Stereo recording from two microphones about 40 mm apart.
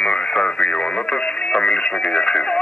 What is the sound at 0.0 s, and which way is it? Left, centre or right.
Radio, left.